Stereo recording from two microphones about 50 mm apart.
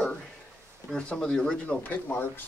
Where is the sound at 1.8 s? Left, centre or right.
Left.